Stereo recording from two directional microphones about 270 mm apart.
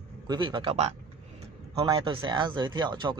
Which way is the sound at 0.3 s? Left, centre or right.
Centre.